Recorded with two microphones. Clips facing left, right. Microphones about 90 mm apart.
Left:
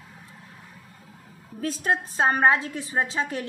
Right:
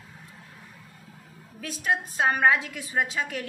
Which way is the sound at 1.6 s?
35° left (ahead or behind).